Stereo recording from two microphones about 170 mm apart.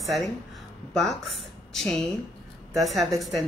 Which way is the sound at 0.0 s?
Centre (ahead or behind).